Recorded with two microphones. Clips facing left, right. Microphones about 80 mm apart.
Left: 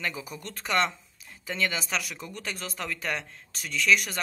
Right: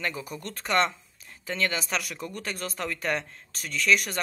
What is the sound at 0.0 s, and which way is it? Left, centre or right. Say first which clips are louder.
Speech: right 2 dB; centre.